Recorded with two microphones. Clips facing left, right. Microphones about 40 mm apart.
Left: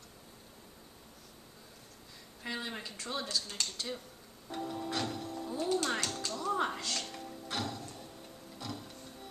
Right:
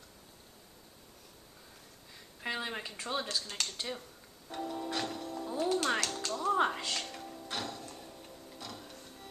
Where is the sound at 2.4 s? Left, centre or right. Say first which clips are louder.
Right 3 dB; right.